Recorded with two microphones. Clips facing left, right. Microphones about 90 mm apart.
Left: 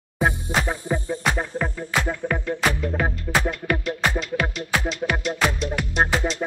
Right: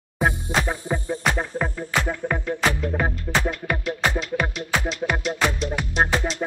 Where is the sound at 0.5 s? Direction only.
20° right (ahead or behind).